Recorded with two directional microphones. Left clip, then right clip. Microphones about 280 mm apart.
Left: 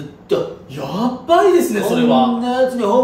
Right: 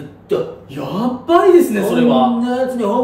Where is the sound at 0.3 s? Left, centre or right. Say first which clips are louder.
Even; centre.